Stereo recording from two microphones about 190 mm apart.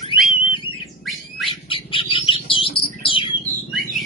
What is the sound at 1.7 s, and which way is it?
Bird, 30° left (ahead or behind).